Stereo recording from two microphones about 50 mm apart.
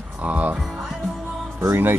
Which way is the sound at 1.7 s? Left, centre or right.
Right.